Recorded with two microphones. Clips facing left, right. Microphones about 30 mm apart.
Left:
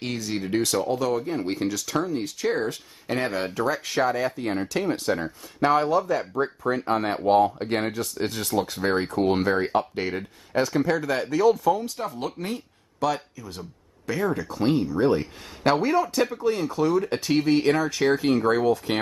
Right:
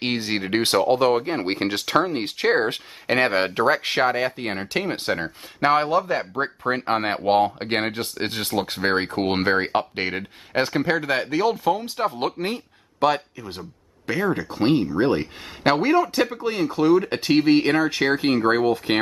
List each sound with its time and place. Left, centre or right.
0.0 s speech: right
18.3 s speech: right